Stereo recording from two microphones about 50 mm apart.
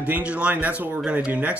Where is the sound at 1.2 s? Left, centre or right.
Right.